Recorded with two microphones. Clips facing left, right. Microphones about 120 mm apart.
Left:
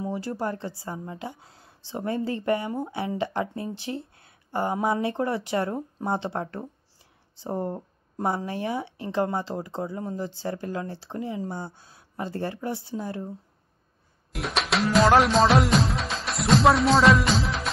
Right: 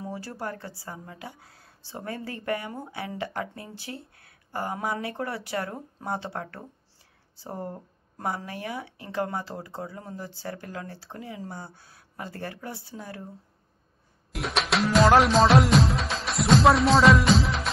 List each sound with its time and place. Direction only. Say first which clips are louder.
0.0 s a woman's voice: left 5 dB; 20° left (ahead or behind)
14.3 s music: even; centre (ahead or behind)